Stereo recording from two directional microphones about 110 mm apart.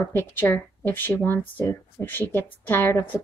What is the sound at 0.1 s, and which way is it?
Speech, 20° left (ahead or behind).